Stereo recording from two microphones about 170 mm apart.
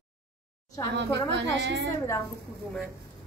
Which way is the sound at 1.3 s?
90° right.